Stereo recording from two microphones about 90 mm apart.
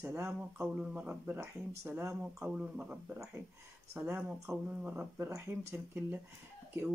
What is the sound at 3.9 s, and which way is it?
Speech, 25° right (ahead or behind).